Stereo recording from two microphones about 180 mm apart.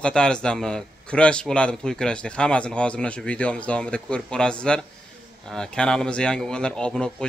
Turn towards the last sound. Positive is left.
turn(degrees=5)  # may be behind; listen again after turning